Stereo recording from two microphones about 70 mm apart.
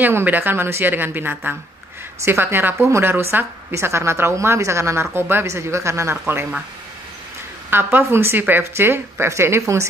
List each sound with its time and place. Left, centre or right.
0.0 s a woman's voice: right
7.7 s a woman's voice: right